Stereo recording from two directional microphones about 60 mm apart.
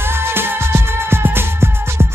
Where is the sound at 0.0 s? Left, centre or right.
Right.